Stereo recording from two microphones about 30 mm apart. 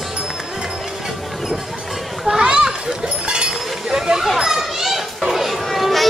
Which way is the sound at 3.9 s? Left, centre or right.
Right.